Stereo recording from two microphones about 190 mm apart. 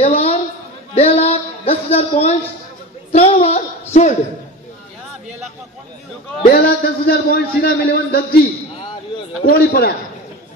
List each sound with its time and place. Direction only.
0.0 s a sound: 30° left (ahead or behind)
0.9 s music: 30° left (ahead or behind)
3.1 s a woman's voice: 30° left (ahead or behind)
6.5 s a man's voice: 50° left (ahead or behind)